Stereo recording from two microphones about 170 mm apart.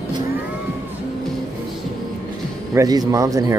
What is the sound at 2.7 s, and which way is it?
Speech, 20° right (ahead or behind).